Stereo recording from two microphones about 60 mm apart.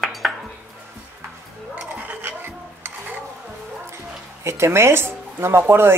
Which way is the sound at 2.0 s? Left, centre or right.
Right.